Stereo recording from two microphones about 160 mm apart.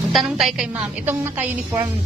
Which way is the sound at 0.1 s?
Centre (ahead or behind).